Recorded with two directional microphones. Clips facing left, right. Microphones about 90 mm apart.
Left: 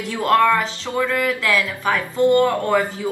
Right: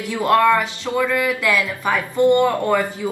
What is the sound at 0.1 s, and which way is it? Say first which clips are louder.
Speech: right 1 dB; 15° right (ahead or behind).